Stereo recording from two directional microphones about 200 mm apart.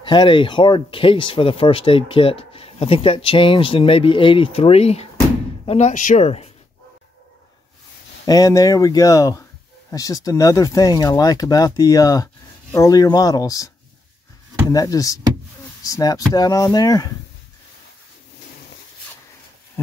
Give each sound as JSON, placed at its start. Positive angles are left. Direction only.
{"t": 0.0, "sound": "speech", "side_deg": 25}
{"t": 8.3, "sound": "speech", "side_deg": 15}
{"t": 14.7, "sound": "speech", "side_deg": 20}